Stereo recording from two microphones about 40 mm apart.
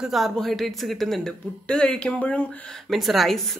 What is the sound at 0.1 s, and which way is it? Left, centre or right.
Speech, centre.